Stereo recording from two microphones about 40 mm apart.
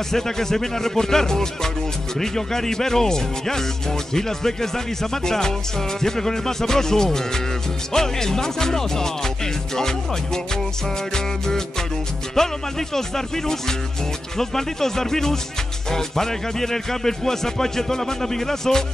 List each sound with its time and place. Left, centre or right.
0.1 s speech: centre